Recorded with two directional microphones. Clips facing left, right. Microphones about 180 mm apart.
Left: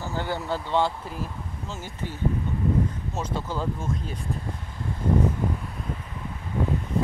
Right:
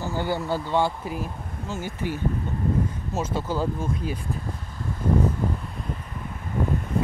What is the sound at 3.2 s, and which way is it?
Speech, 5° right (ahead or behind).